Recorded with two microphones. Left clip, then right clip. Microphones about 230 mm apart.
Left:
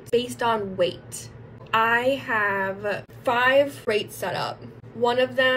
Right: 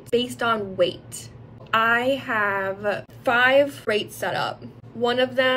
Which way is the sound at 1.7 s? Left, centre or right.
Right.